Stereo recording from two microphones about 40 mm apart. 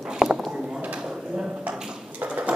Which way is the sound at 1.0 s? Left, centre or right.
Right.